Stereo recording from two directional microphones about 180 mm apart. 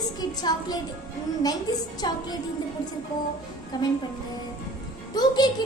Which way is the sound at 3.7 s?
25° left (ahead or behind).